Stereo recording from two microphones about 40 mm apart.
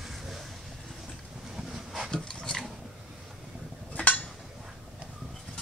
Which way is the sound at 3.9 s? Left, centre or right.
Left.